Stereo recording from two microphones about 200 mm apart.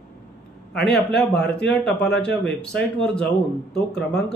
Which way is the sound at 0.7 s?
55° left (ahead or behind).